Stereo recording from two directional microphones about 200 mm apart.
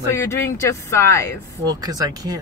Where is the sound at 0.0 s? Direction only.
15° left (ahead or behind).